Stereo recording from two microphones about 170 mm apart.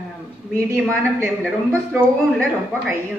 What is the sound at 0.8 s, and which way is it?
Speech, 5° left (ahead or behind).